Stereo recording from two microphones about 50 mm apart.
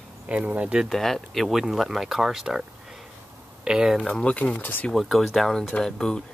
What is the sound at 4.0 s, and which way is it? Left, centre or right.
Speech, centre.